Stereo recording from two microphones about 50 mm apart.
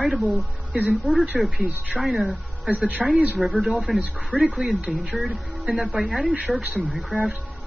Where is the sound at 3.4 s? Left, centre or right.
Centre.